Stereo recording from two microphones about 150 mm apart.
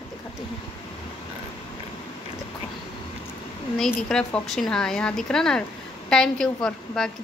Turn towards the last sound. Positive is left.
turn(degrees=5)  # may be behind; listen again after turning